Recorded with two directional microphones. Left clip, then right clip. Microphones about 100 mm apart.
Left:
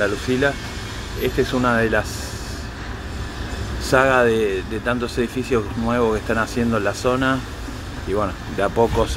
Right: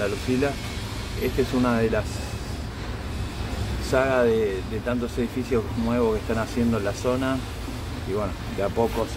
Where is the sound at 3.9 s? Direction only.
40° left (ahead or behind).